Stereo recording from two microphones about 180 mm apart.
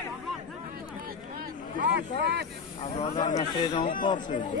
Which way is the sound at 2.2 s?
65° right (ahead or behind).